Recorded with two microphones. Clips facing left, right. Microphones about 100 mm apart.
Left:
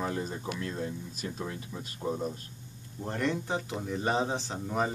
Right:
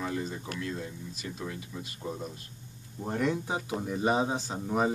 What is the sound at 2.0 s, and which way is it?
Speech, 15° left (ahead or behind).